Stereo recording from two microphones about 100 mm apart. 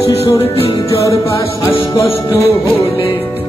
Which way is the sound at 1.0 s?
30° left (ahead or behind).